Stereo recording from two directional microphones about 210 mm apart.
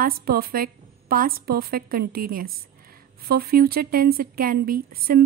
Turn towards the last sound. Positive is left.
turn(degrees=-45)  # may be behind; listen again after turning